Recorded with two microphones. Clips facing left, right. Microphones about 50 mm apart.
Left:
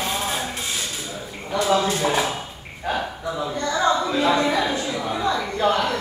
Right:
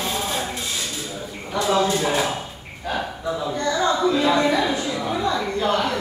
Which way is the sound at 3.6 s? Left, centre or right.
Left.